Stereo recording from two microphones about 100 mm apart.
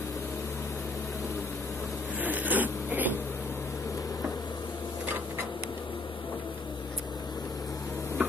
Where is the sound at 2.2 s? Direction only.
15° right (ahead or behind).